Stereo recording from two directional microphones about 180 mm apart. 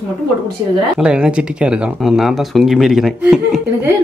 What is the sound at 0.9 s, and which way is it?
Speech, 5° right (ahead or behind).